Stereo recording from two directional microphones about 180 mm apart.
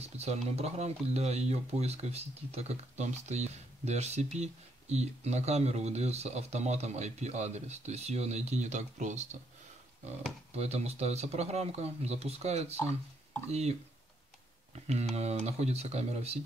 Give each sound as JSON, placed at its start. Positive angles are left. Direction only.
{"t": 0.0, "sound": "speech", "side_deg": -35}
{"t": 10.5, "sound": "speech", "side_deg": -35}